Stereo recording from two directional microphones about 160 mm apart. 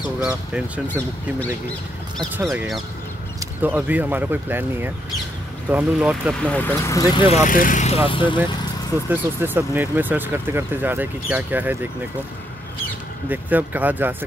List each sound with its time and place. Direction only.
0.2 s speech: 5° right (ahead or behind)
0.8 s speech: 10° left (ahead or behind)
3.3 s speech: 10° right (ahead or behind)
6.4 s speech: 10° left (ahead or behind)
6.9 s speech: 20° left (ahead or behind)
7.4 s speech: 55° left (ahead or behind)
8.1 s speech: 30° left (ahead or behind)
9.1 s speech: 15° right (ahead or behind)
13.3 s speech: 10° right (ahead or behind)